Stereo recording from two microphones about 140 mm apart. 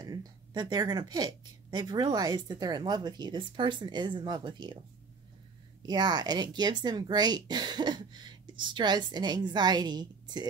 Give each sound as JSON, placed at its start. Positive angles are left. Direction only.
{"t": 0.0, "sound": "speech", "side_deg": -25}
{"t": 5.8, "sound": "speech", "side_deg": -30}